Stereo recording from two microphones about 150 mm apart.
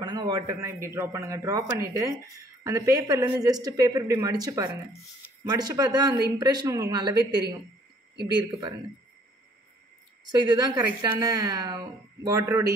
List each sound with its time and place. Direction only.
0.0 s a man's voice: 30° right (ahead or behind)
10.2 s a man's voice: 30° right (ahead or behind)